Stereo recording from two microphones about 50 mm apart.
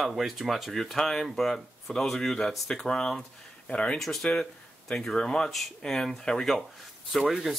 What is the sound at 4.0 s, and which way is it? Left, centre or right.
Speech, centre.